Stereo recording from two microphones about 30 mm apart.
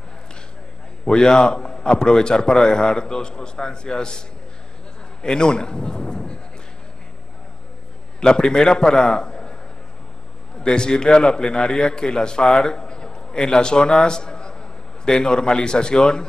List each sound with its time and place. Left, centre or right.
1.0 s a man's voice: left
5.2 s a man's voice: left
8.2 s a man's voice: left
10.6 s a man's voice: left